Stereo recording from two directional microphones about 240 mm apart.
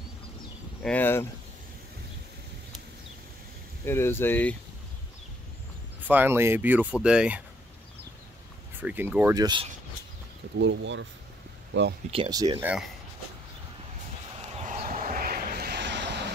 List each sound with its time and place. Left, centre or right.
0.8 s speech: centre
3.8 s speech: centre
6.0 s speech: centre
8.8 s speech: centre
10.6 s speech: right
12.1 s speech: centre
14.6 s a sound: right